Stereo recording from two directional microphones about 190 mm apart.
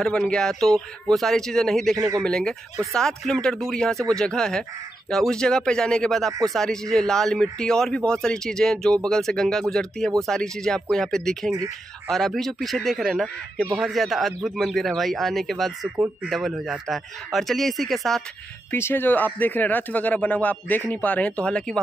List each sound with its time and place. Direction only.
0.0 s a man's voice: 5° left (ahead or behind)
2.0 s speech: 20° right (ahead or behind)
2.2 s a man's voice: 5° left (ahead or behind)
18.7 s speech: 10° left (ahead or behind)